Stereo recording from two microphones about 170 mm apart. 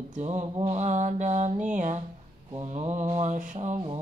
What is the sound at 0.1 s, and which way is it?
Mantra, 40° right (ahead or behind).